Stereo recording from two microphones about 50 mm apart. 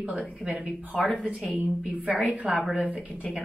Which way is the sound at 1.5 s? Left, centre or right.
Right.